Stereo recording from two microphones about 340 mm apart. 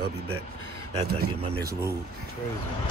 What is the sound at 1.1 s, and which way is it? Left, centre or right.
Speech, right.